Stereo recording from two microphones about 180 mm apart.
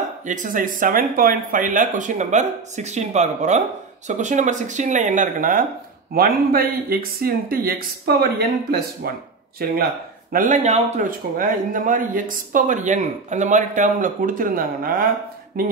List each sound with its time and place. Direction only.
0.2 s speech: 45° right (ahead or behind)
10.3 s speech: 45° right (ahead or behind)